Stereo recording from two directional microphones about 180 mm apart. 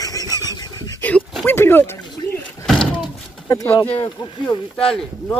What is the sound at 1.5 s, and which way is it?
Speech, 10° left (ahead or behind).